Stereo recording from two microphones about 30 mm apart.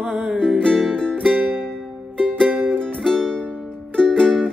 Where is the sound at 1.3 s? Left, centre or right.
Right.